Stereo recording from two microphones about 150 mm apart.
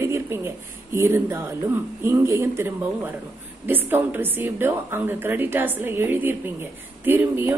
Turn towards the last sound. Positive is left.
turn(degrees=-15)  # may be behind; listen again after turning